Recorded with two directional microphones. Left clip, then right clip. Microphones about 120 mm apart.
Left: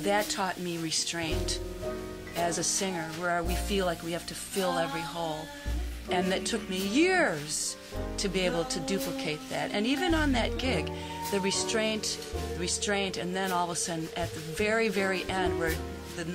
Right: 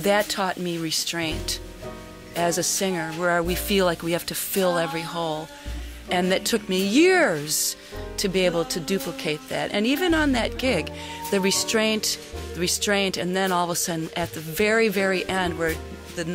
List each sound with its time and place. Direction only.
0.0 s speech: 45° right (ahead or behind)